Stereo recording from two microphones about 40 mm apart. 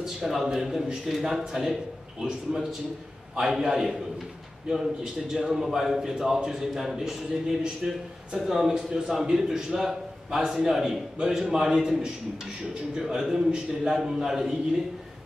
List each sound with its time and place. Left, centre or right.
0.0 s a man's voice: centre
12.9 s a man's voice: centre